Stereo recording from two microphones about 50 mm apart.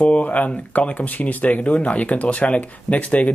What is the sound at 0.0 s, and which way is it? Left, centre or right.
Speech, left.